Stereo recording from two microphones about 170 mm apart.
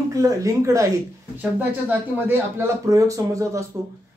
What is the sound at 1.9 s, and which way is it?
Speech, 15° right (ahead or behind).